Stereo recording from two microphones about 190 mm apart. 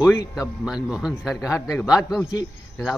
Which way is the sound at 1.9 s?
Centre (ahead or behind).